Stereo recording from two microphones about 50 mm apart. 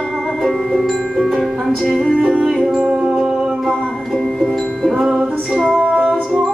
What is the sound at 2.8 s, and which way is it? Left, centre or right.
Music, right.